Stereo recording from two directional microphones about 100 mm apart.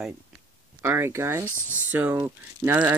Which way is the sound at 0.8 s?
25° right (ahead or behind).